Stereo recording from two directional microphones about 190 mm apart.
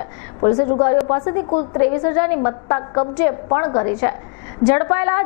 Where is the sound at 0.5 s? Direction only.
35° left (ahead or behind).